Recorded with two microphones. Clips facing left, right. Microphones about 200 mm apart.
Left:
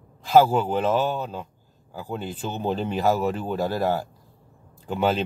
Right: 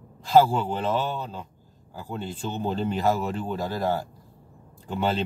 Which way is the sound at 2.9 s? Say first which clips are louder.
Left 2 dB; 5° left (ahead or behind).